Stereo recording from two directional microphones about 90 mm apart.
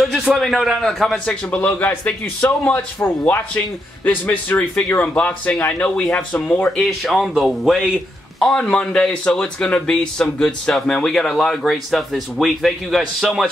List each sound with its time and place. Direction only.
0.0 s a man's voice: centre (ahead or behind)
1.2 s a man's voice: 10° left (ahead or behind)
6.8 s speech: centre (ahead or behind)